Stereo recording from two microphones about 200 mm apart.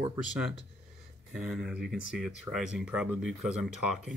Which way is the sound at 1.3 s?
Centre (ahead or behind).